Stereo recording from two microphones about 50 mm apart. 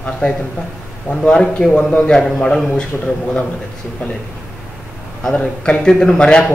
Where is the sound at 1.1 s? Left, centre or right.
Centre.